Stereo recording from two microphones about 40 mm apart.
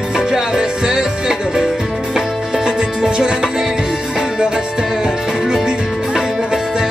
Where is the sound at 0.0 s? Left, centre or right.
Centre.